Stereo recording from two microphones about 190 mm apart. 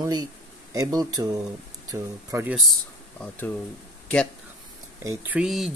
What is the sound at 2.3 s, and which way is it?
Speech, 10° right (ahead or behind).